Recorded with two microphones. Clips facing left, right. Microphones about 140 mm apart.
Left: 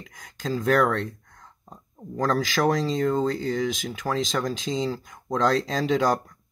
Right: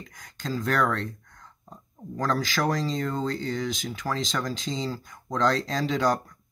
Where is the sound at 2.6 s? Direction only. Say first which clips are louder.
Left 7 dB; centre (ahead or behind).